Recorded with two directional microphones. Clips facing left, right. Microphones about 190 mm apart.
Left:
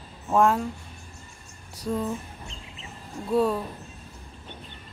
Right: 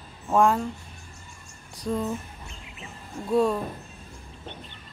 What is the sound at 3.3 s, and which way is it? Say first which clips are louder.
Speech: right 1 dB; 5° left (ahead or behind).